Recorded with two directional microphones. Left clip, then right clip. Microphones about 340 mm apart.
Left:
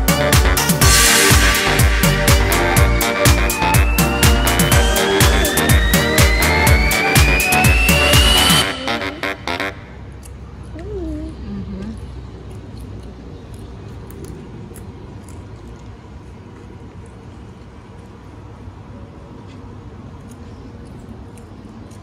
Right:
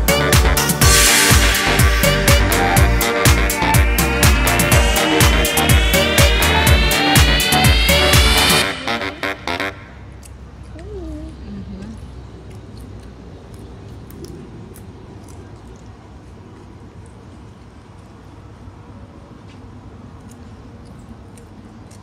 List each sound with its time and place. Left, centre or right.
0.0 s music: centre